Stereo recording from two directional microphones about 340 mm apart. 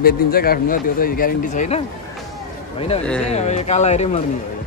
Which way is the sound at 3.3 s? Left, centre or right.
Centre.